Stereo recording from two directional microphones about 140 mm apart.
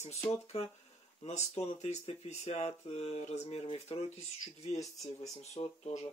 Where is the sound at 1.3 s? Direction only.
55° left (ahead or behind).